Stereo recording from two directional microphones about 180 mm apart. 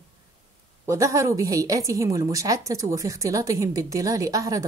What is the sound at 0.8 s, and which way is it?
A woman's voice, 15° right (ahead or behind).